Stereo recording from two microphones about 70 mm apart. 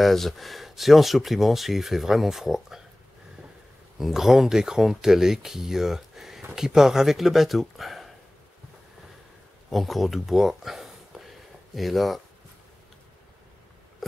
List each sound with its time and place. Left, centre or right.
0.0 s speech: centre
4.0 s speech: centre
9.7 s a sound: centre